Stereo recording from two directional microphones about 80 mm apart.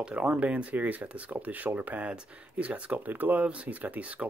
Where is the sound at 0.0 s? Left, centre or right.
Centre.